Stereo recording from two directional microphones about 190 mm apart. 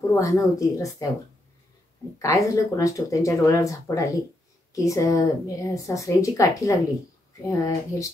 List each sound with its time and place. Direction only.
0.1 s speech: 15° left (ahead or behind)
2.1 s speech: 15° left (ahead or behind)